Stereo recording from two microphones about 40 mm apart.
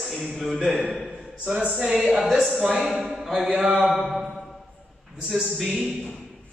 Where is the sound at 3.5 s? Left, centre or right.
Centre.